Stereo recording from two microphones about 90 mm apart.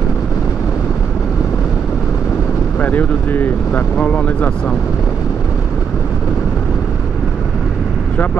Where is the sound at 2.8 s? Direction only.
20° left (ahead or behind).